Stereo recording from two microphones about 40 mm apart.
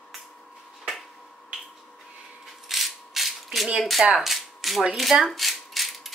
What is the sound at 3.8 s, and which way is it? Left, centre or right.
Speech, centre.